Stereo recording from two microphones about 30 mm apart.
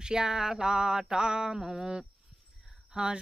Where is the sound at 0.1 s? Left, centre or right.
Right.